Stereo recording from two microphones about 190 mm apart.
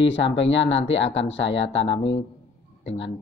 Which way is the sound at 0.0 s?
75° left (ahead or behind).